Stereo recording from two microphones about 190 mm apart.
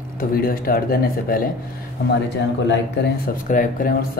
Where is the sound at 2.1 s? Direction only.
65° left (ahead or behind).